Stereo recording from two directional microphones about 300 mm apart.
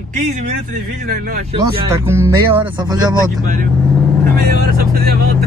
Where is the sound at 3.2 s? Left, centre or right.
Right.